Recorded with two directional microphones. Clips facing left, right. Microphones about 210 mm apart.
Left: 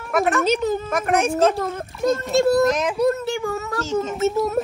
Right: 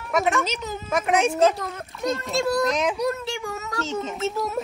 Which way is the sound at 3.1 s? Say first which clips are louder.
Left 6 dB; 50° left (ahead or behind).